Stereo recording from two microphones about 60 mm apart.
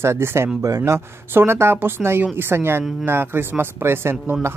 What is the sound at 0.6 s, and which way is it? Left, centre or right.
Speech, right.